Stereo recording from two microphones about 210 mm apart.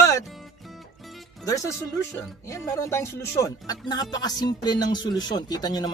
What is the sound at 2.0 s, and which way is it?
Speech, 15° left (ahead or behind).